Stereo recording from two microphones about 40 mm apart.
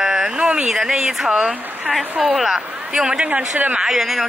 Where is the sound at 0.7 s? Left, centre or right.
Centre.